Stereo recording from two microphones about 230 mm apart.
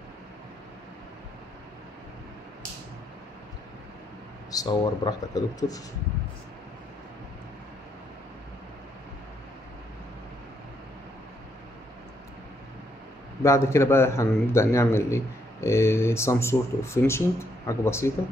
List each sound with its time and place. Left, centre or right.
4.5 s a man's voice: centre
13.4 s a man's voice: centre